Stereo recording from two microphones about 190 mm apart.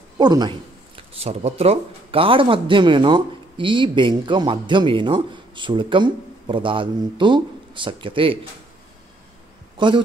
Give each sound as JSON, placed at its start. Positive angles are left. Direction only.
{"t": 0.2, "sound": "speech", "side_deg": -20}
{"t": 9.8, "sound": "a man's voice", "side_deg": -25}